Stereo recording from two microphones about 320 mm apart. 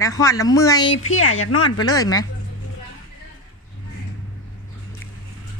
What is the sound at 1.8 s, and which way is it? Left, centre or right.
Speech, centre.